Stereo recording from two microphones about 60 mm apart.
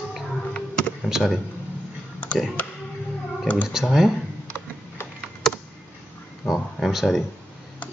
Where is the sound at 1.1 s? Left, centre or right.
Centre.